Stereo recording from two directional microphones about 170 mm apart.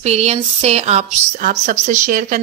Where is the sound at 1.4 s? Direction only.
50° right (ahead or behind).